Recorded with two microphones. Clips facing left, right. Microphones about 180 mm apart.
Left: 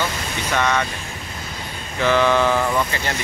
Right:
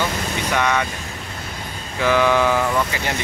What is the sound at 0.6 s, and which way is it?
Speech, 10° right (ahead or behind).